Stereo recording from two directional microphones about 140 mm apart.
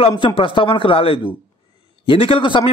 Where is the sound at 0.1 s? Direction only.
35° left (ahead or behind).